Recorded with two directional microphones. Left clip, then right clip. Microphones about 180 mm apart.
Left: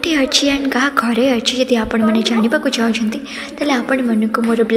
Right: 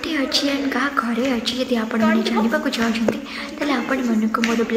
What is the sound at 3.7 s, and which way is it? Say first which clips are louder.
Speech: left 5 dB; 35° left (ahead or behind).